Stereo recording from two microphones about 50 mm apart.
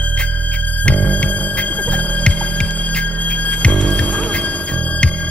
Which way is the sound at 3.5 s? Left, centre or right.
Centre.